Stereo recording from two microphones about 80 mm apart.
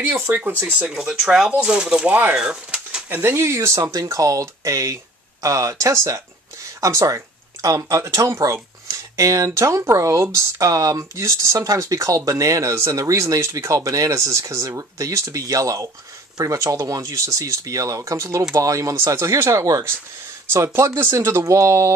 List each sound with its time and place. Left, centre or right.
0.3 s speech: right
3.1 s speech: right